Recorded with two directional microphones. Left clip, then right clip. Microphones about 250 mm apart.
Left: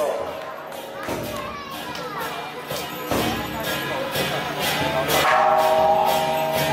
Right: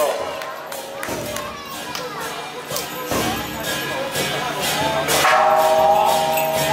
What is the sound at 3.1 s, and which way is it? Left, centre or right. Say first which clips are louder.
Music: right 1 dB; centre.